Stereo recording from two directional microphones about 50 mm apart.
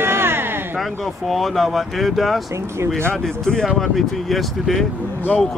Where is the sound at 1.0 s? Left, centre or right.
Centre.